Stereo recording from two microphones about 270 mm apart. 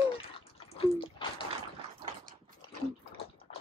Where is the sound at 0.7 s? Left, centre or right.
Centre.